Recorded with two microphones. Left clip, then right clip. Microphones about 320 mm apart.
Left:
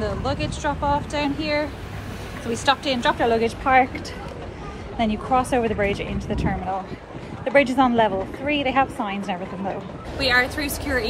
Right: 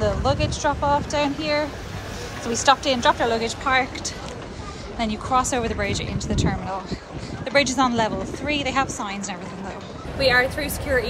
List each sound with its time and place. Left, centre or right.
0.0 s a woman's voice: centre
4.9 s a woman's voice: centre